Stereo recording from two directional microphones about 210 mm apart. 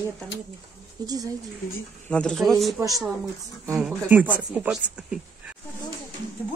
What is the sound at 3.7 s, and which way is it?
Speech, 5° right (ahead or behind).